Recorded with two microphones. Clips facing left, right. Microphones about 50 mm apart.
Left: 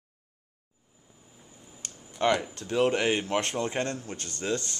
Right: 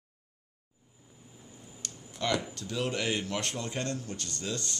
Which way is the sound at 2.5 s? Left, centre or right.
Left.